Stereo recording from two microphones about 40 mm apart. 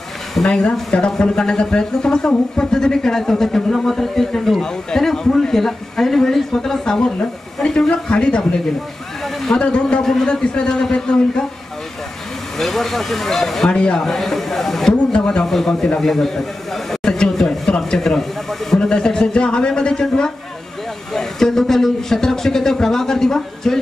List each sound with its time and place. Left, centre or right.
0.4 s speech: left
9.6 s speech: left
12.5 s speech: centre
13.7 s speech: centre
14.0 s speech: centre
15.1 s speech: left
15.4 s speech: centre
17.0 s a sound: centre
18.8 s speech: centre